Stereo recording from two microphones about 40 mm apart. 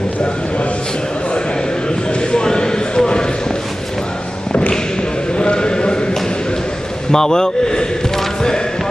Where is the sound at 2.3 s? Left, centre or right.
Centre.